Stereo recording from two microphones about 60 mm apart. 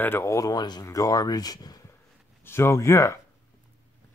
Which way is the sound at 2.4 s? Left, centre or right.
Left.